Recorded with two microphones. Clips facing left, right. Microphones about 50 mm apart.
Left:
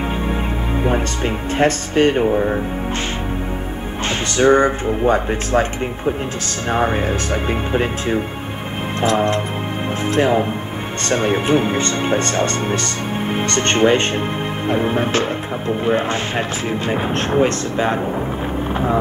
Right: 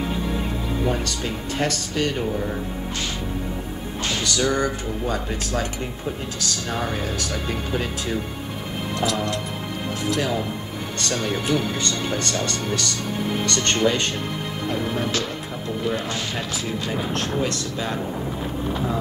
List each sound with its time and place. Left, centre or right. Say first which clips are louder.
0.8 s speech: left 7 dB; left
4.3 s speech: left 10 dB; left
6.7 s speech: left 10 dB; left